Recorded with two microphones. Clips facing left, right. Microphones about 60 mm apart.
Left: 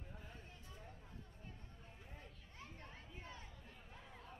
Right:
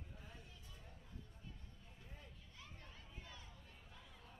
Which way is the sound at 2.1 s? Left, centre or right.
Left.